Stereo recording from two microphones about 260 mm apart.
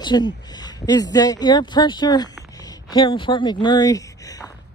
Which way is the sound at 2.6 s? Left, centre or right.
Centre.